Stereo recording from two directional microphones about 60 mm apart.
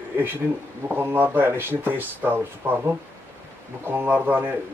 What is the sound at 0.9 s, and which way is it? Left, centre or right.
Speech, right.